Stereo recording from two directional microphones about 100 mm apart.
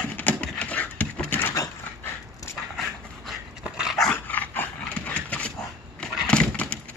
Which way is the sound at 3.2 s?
5° right (ahead or behind).